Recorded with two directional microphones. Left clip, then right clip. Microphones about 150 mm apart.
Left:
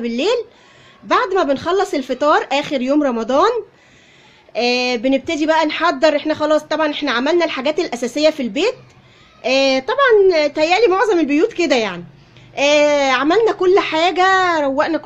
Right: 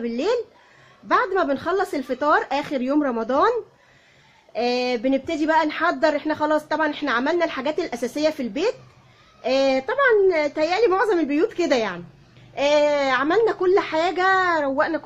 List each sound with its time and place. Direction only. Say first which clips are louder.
0.0 s speech: left 5 dB; 20° left (ahead or behind)